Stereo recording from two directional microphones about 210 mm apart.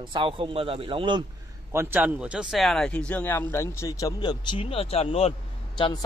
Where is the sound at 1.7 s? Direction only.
10° right (ahead or behind).